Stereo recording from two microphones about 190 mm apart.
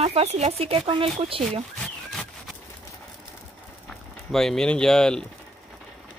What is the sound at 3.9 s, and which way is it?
Speech, centre (ahead or behind).